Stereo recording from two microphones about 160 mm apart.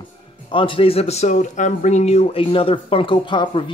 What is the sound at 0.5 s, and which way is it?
Speech, 30° left (ahead or behind).